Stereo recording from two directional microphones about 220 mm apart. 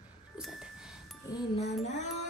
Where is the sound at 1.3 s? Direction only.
15° left (ahead or behind).